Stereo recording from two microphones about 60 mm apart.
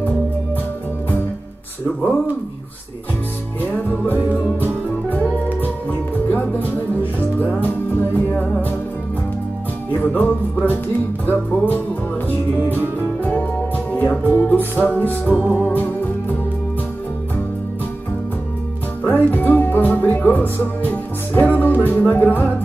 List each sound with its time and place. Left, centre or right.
3.6 s music: left
5.6 s music: left
9.9 s music: left
13.2 s music: centre
15.3 s music: right
15.6 s music: left
19.0 s music: left